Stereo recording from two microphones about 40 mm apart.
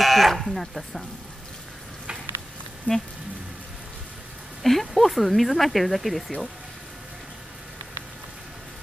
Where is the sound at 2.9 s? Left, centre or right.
Left.